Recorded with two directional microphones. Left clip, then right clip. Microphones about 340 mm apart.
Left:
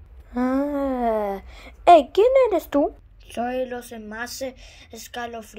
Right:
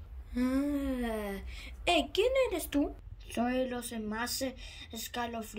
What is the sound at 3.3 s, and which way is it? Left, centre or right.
A woman's voice, centre.